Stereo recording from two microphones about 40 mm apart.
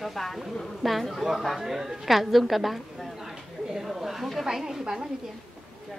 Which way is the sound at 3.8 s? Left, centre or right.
Centre.